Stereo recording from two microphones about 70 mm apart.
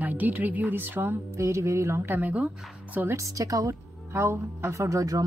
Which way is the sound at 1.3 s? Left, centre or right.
Right.